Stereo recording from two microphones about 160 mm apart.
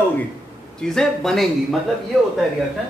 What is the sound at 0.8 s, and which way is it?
A man's voice, centre (ahead or behind).